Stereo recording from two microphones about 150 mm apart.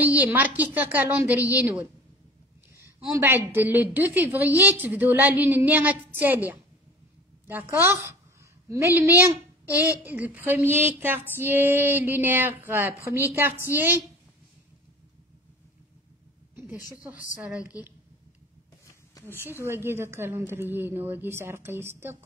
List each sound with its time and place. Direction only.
0.0 s speech: 10° right (ahead or behind)
3.1 s a woman's voice: 15° right (ahead or behind)
17.0 s speech: 10° right (ahead or behind)
19.6 s speech: 15° right (ahead or behind)